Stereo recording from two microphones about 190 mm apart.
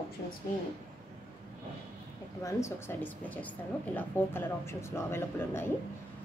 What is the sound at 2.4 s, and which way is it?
Speech, 15° left (ahead or behind).